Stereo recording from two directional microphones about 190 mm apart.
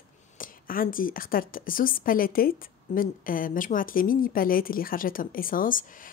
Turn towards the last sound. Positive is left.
turn(degrees=45)  # may be behind; listen again after turning